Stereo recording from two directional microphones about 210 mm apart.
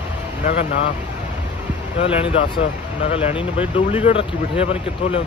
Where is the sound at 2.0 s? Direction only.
30° left (ahead or behind).